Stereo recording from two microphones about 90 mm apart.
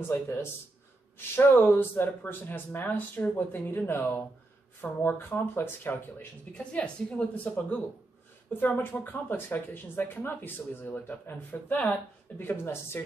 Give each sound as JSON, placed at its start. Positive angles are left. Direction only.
{"t": 0.0, "sound": "speech", "side_deg": 25}
{"t": 6.5, "sound": "a woman's voice", "side_deg": 10}